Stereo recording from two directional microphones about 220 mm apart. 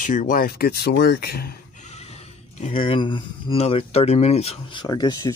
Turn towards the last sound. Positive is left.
turn(degrees=20)  # may be behind; listen again after turning